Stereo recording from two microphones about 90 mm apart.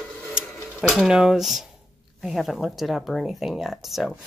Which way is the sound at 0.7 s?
5° right (ahead or behind).